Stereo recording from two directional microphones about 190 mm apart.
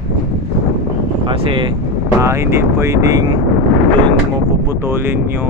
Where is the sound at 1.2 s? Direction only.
25° right (ahead or behind).